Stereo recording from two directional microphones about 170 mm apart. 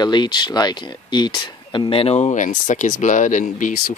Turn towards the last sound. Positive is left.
turn(degrees=50)  # may be behind; listen again after turning